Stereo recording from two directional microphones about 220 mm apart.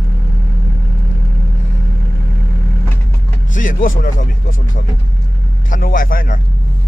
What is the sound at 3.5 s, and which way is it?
Speech, 35° left (ahead or behind).